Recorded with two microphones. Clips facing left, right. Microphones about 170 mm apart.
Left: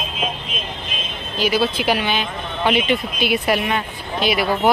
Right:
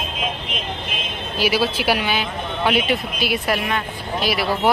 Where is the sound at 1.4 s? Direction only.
10° right (ahead or behind).